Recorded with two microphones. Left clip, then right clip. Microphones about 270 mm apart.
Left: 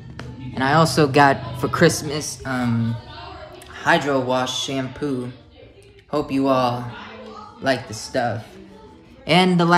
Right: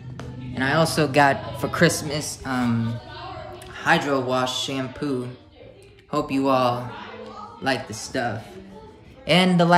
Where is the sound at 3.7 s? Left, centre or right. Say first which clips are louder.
Left 2 dB; centre.